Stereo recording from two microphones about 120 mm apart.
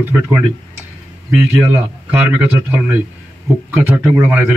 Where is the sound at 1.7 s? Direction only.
15° right (ahead or behind).